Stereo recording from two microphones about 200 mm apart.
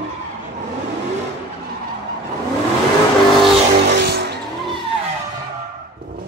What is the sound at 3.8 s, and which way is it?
Music, 55° right (ahead or behind).